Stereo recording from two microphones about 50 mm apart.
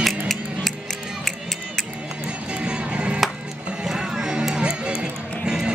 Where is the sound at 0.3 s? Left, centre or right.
Centre.